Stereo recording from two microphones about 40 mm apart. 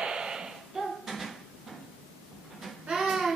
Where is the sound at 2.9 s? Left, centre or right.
Centre.